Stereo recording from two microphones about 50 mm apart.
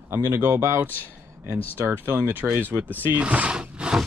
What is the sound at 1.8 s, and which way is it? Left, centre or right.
Speech, right.